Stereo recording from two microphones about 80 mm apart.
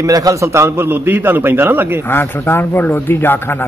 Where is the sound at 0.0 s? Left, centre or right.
Right.